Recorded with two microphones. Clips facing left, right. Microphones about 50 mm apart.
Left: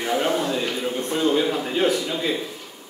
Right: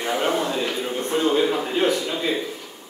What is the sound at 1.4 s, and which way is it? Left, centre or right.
Speech, centre.